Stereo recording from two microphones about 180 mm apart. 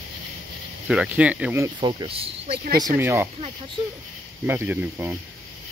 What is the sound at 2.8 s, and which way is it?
Speech, 15° right (ahead or behind).